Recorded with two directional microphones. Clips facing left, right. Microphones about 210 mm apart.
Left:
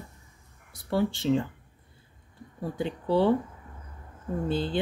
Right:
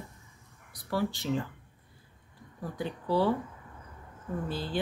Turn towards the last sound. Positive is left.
turn(degrees=25)  # may be behind; listen again after turning